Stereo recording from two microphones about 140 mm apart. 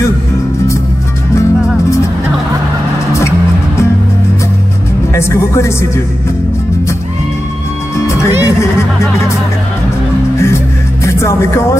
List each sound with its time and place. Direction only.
1.3 s music: 20° left (ahead or behind)
3.1 s music: 20° left (ahead or behind)
5.1 s speech: 20° left (ahead or behind)
8.3 s music: 15° right (ahead or behind)
10.3 s music: 20° left (ahead or behind)